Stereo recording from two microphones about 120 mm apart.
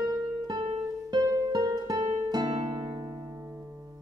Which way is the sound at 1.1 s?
35° right (ahead or behind).